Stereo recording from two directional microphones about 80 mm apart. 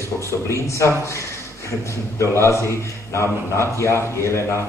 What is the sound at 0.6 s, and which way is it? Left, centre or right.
A man's voice, left.